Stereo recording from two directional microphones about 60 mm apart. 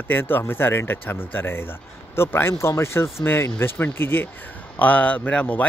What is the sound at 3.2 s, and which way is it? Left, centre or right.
Speech, left.